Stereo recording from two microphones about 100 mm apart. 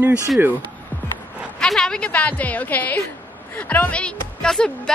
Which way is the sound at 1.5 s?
5° left (ahead or behind).